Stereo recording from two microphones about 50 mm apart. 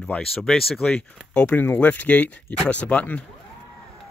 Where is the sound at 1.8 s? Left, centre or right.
Left.